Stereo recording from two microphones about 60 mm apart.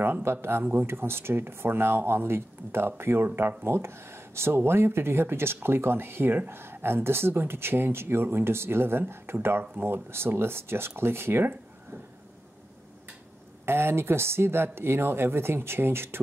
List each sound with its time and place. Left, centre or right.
0.0 s speech: right
13.7 s speech: right